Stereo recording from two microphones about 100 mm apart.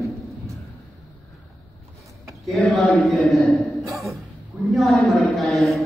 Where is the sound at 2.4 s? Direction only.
Centre (ahead or behind).